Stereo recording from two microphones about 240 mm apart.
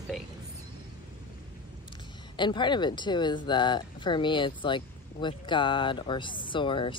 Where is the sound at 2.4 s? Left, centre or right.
Centre.